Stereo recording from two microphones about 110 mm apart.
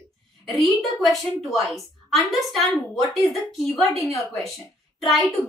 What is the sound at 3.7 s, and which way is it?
A woman's voice, centre (ahead or behind).